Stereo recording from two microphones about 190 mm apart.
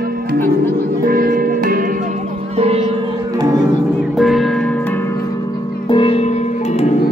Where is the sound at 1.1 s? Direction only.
50° right (ahead or behind).